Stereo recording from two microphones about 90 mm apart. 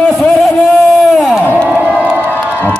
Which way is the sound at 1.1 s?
Centre (ahead or behind).